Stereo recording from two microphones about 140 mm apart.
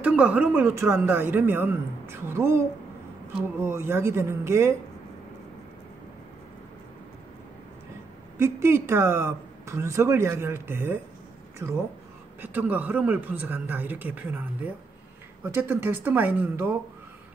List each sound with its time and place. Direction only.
0.0 s speech: 10° right (ahead or behind)
8.4 s speech: 20° right (ahead or behind)
12.4 s speech: 10° right (ahead or behind)